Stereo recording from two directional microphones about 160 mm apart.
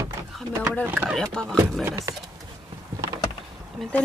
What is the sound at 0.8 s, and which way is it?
Speech, 10° right (ahead or behind).